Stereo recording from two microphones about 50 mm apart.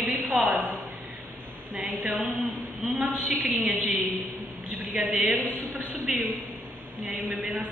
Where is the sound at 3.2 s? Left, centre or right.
Right.